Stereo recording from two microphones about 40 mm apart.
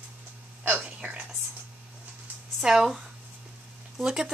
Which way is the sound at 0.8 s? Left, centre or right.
Right.